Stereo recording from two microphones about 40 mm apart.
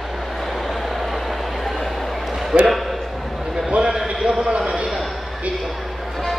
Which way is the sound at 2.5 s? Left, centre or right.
Right.